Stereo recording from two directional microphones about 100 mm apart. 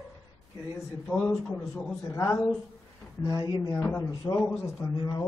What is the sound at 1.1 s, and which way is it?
Speech, 20° left (ahead or behind).